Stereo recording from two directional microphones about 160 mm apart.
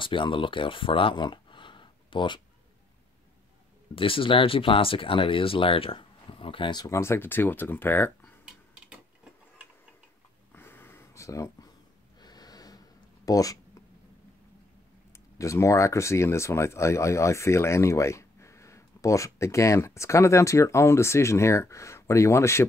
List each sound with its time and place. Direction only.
0.0 s speech: 30° left (ahead or behind)
3.9 s speech: 35° left (ahead or behind); by 8.4 s 15° left (ahead or behind)
10.5 s a sound: 15° left (ahead or behind)
15.1 s speech: 20° left (ahead or behind)